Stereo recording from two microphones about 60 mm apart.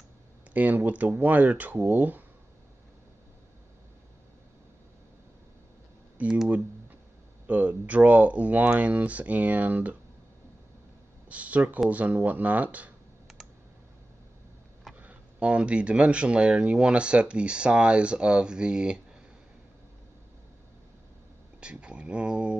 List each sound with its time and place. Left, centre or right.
0.5 s speech: right
6.2 s speech: centre
7.4 s speech: right
11.2 s speech: right
15.0 s speech: right
21.5 s speech: centre